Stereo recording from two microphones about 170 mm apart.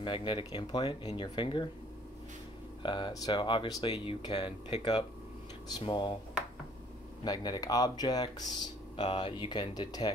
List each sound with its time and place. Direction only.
0.0 s speech: 30° left (ahead or behind)
2.8 s speech: 30° left (ahead or behind)
7.2 s speech: 25° left (ahead or behind)